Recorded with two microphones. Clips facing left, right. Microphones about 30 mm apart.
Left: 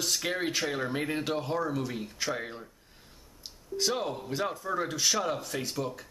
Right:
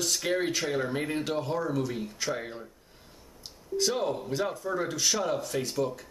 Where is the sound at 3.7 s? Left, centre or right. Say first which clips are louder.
Right 2 dB; centre.